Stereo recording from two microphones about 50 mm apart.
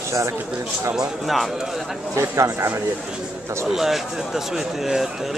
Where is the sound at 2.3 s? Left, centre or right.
Right.